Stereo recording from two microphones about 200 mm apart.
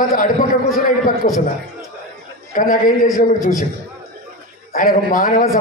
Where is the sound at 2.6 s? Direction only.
45° left (ahead or behind).